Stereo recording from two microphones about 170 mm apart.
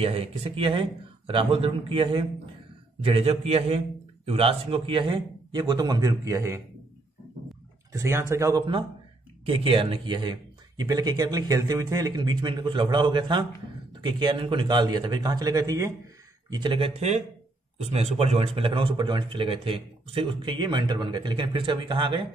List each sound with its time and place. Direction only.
0.0 s speech: 35° right (ahead or behind); by 6.6 s 20° right (ahead or behind)
7.9 s speech: 15° right (ahead or behind)